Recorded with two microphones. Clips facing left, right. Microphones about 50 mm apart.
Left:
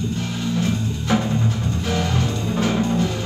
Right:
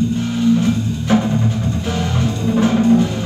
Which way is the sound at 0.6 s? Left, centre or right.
Right.